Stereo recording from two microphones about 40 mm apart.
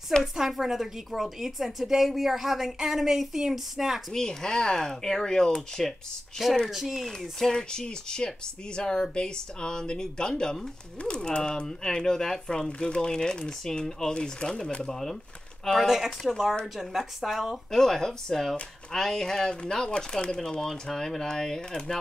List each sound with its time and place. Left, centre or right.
0.2 s a woman's voice: centre
4.1 s speech: centre
6.7 s speech: centre
7.2 s speech: centre
14.8 s speech: centre
15.9 s a woman's voice: centre
17.6 s speech: centre